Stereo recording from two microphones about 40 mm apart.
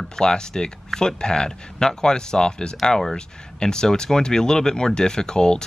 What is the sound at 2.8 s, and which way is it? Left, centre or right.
Speech, centre.